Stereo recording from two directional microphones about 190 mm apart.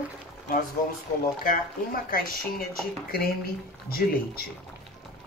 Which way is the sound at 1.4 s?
50° left (ahead or behind).